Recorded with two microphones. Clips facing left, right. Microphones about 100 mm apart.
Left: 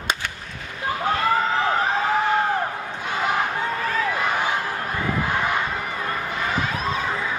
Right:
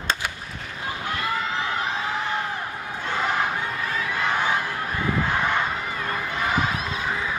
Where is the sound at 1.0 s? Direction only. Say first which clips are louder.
Left 7 dB; 35° left (ahead or behind).